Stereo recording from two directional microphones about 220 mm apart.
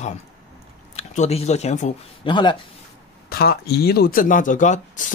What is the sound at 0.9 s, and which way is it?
Speech, 30° left (ahead or behind).